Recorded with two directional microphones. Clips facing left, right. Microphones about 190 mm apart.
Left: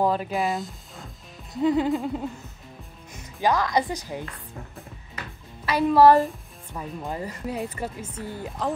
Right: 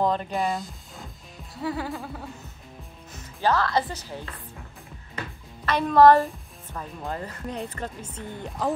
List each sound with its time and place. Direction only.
0.0 s speech: 5° left (ahead or behind)
1.5 s music: 20° left (ahead or behind)
3.3 s a woman's voice: 15° left (ahead or behind)
5.7 s a woman's voice: 10° left (ahead or behind)